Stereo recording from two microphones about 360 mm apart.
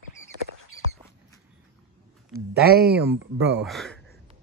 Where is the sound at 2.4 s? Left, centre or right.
Right.